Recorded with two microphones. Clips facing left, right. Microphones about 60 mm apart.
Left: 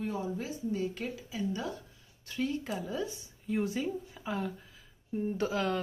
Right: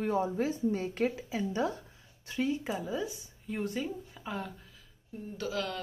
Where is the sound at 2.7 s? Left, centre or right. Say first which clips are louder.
Right 1 dB; centre.